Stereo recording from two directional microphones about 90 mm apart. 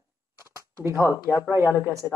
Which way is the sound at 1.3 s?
30° right (ahead or behind).